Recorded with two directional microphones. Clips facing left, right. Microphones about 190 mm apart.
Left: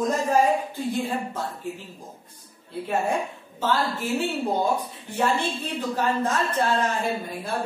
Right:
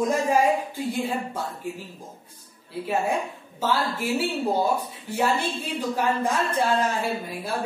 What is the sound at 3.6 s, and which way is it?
Speech, 10° right (ahead or behind).